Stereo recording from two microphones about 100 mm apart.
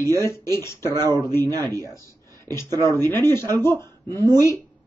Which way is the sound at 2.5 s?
25° left (ahead or behind).